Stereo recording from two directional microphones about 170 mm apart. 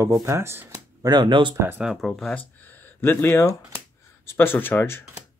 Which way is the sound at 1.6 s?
10° right (ahead or behind).